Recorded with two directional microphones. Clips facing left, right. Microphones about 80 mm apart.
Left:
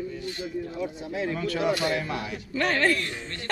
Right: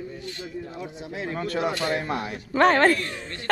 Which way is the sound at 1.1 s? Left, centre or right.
Right.